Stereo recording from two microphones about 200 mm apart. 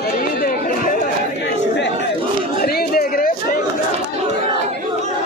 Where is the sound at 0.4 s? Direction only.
45° left (ahead or behind).